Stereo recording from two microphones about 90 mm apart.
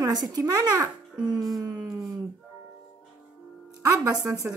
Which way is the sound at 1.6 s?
40° right (ahead or behind).